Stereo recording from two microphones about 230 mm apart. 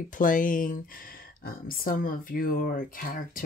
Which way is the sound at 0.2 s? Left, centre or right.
Left.